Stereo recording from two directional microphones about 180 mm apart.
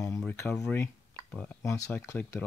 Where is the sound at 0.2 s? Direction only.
10° left (ahead or behind).